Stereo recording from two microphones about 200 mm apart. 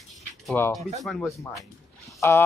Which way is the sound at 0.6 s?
10° left (ahead or behind).